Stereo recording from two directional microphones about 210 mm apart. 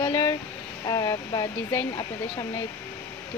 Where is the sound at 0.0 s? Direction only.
20° left (ahead or behind).